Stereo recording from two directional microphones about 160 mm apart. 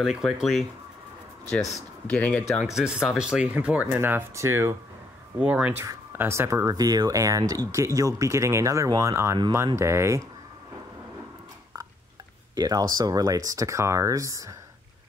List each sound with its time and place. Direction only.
0.0 s speech: centre (ahead or behind)
1.7 s speech: 5° left (ahead or behind)
2.6 s speech: 5° right (ahead or behind)
12.5 s speech: 25° right (ahead or behind)